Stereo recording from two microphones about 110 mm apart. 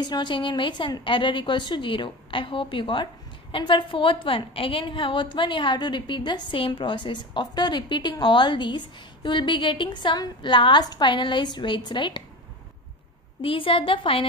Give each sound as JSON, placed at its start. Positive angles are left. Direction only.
{"t": 0.0, "sound": "a woman's voice", "side_deg": 40}
{"t": 13.4, "sound": "a woman's voice", "side_deg": 55}